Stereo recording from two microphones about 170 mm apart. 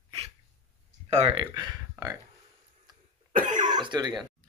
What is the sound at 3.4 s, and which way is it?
Cough, 50° right (ahead or behind).